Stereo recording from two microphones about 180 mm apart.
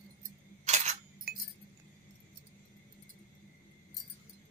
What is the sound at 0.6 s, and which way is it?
Single-lens reflex camera, 40° right (ahead or behind).